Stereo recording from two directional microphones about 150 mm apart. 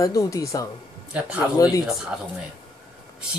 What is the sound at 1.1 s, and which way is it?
Speech, 10° right (ahead or behind).